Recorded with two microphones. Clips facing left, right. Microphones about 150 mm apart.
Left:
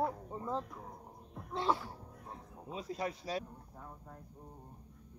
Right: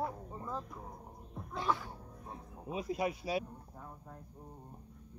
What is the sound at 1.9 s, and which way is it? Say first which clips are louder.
Speech: right 1 dB; 15° right (ahead or behind).